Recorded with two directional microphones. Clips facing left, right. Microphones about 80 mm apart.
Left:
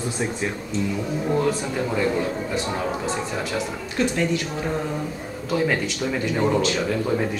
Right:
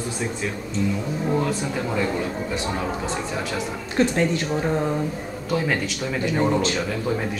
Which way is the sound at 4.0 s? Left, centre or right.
Right.